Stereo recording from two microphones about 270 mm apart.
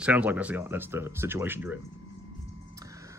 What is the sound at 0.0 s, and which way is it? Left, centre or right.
Speech, centre.